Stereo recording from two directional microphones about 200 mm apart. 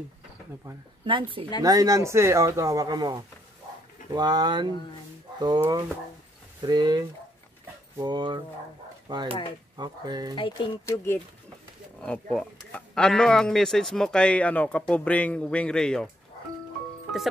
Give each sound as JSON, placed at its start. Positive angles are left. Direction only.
{"t": 0.7, "sound": "speech", "side_deg": -25}
{"t": 10.3, "sound": "speech", "side_deg": 25}
{"t": 12.0, "sound": "a man's voice", "side_deg": 5}